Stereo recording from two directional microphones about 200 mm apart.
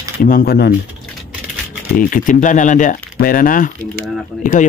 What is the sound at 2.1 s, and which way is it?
Speech, 40° left (ahead or behind).